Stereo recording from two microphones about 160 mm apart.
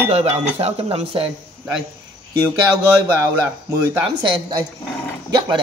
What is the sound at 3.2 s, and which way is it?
Speech, 15° right (ahead or behind).